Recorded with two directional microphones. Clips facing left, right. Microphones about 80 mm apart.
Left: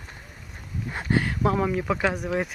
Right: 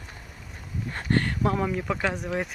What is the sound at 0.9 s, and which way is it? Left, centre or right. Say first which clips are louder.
Speech: left 1 dB; centre.